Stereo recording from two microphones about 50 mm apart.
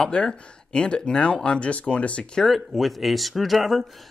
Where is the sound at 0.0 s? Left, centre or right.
Centre.